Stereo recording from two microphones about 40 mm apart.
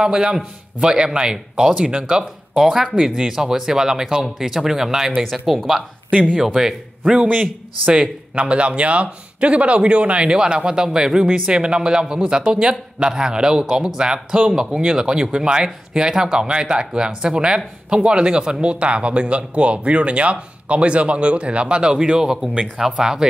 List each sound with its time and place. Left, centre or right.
0.0 s a man's voice: right
2.5 s speech: centre
6.3 s speech: centre
7.8 s a man's voice: right